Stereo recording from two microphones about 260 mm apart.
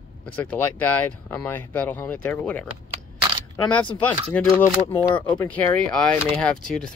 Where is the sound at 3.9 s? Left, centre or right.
Centre.